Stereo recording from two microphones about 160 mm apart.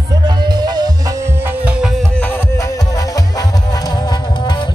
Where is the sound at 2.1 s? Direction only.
10° left (ahead or behind).